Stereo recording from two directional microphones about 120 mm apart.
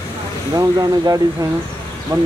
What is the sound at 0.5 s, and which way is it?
Speech, 30° right (ahead or behind).